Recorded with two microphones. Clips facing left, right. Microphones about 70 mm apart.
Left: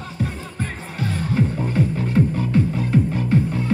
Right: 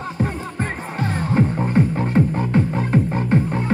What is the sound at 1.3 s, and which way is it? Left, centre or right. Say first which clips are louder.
Music: right 4 dB; right.